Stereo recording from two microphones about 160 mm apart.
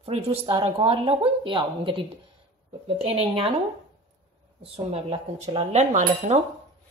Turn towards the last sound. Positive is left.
turn(degrees=-45)  # may be behind; listen again after turning